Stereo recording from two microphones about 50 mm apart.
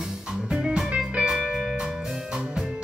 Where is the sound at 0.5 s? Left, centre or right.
Centre.